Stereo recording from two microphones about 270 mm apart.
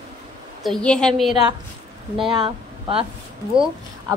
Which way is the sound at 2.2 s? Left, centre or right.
Centre.